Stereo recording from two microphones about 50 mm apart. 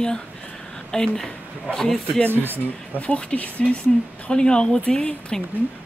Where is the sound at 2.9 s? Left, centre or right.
Left.